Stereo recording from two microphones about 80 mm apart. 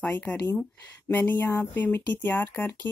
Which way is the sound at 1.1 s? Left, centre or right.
Left.